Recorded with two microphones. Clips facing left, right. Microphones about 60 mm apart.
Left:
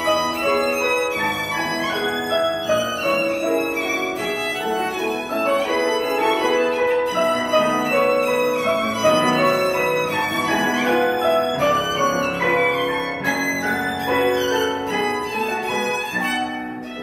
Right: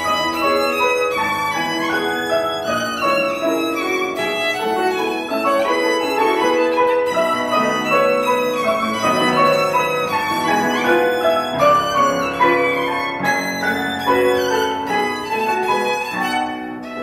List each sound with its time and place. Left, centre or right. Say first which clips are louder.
0.5 s music: right 3 dB; right
2.3 s music: left 3 dB; right
5.5 s music: right 3 dB; right
14.0 s music: right 4 dB; right